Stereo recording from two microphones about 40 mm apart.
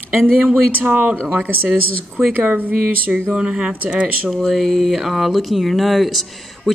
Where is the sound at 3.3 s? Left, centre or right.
Right.